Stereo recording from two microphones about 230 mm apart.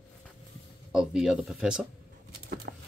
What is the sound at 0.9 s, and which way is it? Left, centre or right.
Speech, centre.